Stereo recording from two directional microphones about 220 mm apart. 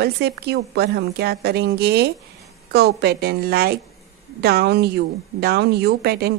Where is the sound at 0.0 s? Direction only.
45° right (ahead or behind).